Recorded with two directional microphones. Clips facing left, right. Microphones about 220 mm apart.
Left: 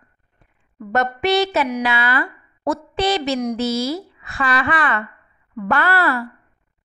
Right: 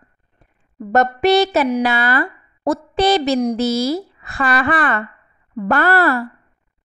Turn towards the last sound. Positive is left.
turn(degrees=-45)  # may be behind; listen again after turning